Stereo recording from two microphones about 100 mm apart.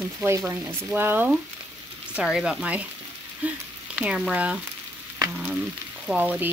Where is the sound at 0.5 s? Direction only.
25° right (ahead or behind).